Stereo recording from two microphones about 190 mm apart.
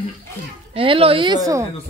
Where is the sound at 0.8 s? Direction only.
30° right (ahead or behind).